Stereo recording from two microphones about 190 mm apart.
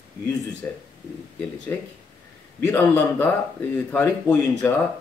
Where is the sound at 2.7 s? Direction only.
10° left (ahead or behind).